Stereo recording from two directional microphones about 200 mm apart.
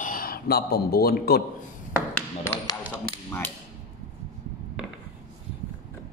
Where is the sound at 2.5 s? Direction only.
15° left (ahead or behind).